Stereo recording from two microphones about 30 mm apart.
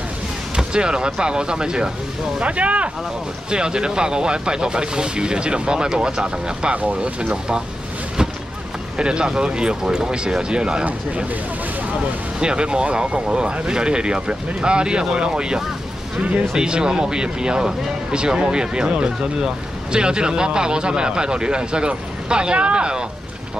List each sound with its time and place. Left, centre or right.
0.7 s speech: right
2.4 s speech: right
3.4 s speech: right
8.9 s speech: right
12.4 s speech: right